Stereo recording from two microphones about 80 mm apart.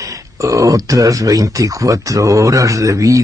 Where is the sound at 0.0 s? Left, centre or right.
Right.